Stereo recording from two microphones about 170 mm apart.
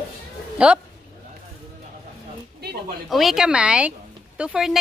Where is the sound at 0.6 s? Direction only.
5° right (ahead or behind).